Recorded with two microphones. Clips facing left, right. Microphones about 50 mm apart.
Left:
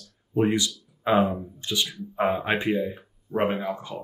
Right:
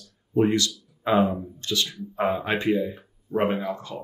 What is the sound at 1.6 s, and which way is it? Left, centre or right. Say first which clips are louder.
Speech: right 1 dB; centre.